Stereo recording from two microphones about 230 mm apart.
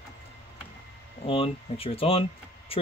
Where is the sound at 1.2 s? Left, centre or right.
Left.